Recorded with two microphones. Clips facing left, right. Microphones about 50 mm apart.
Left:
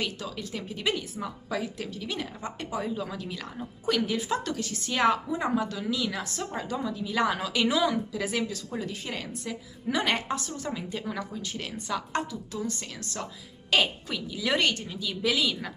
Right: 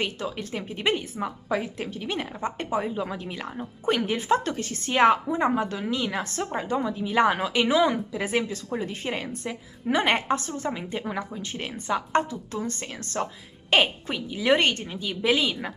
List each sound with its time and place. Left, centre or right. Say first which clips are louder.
0.0 s a woman's voice: right 4 dB; right